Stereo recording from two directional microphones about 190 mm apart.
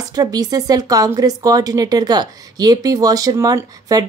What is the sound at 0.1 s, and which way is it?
Speech, 20° right (ahead or behind).